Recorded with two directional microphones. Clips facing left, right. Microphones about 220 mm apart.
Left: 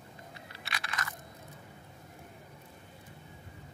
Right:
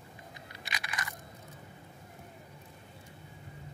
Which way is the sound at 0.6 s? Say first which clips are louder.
Left 1 dB; 15° right (ahead or behind).